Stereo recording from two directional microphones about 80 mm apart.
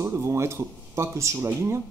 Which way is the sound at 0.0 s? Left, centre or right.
Right.